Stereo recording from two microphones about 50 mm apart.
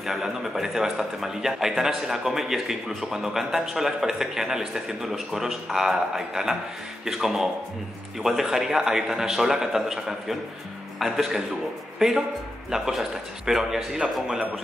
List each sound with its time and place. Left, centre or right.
0.0 s a man's voice: centre
12.7 s speech: centre